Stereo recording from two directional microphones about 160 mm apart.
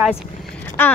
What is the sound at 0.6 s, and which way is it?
Vehicle, 15° left (ahead or behind).